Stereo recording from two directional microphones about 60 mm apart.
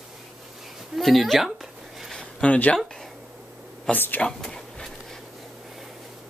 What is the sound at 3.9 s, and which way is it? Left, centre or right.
Speech, centre.